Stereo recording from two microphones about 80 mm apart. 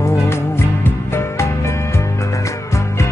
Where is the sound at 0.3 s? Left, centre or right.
Left.